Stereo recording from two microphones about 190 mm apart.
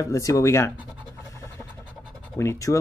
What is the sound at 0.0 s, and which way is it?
Speech, 15° left (ahead or behind).